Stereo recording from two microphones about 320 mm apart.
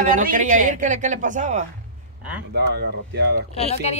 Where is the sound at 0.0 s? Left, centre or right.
Right.